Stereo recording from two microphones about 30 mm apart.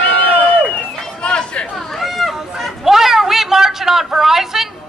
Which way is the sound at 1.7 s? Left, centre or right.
Centre.